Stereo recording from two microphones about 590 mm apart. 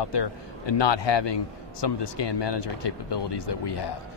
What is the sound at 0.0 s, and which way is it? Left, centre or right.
Speech, left.